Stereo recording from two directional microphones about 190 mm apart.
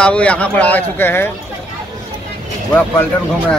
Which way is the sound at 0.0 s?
5° left (ahead or behind).